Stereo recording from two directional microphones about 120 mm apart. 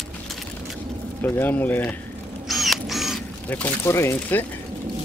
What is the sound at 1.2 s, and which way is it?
Speech, 15° left (ahead or behind).